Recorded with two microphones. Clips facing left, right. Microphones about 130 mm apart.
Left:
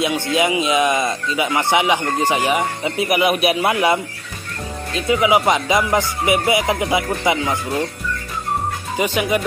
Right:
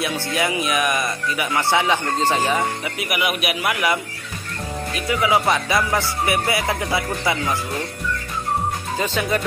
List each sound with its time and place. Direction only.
0.0 s speech: 20° left (ahead or behind)
8.9 s speech: 15° left (ahead or behind)